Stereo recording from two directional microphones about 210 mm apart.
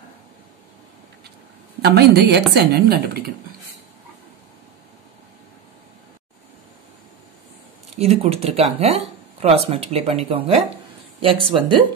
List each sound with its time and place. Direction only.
1.8 s a woman's voice: 50° right (ahead or behind)
8.0 s speech: 30° right (ahead or behind)